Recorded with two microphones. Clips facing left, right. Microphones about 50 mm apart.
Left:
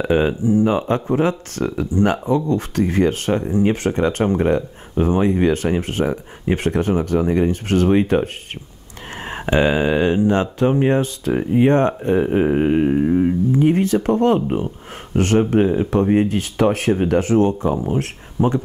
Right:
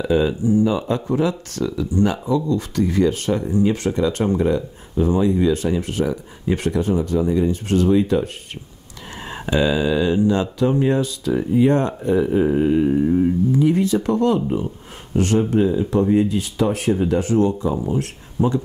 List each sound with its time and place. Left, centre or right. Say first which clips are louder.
0.0 s speech: left 1 dB; left
0.4 s speech: left 1 dB; left
13.6 s speech: left 3 dB; left